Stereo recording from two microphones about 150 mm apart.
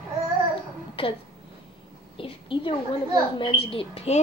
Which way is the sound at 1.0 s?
35° left (ahead or behind).